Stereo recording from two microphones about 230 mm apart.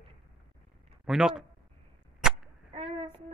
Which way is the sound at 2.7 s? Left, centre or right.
Right.